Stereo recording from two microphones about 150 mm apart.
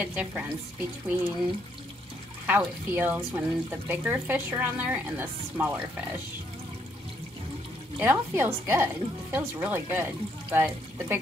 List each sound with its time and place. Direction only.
0.0 s speech: 10° right (ahead or behind)
2.4 s speech: 10° right (ahead or behind)
8.0 s speech: 15° right (ahead or behind)